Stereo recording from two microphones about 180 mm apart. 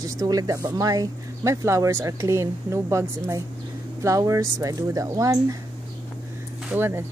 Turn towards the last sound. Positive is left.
turn(degrees=-10)  # may be behind; listen again after turning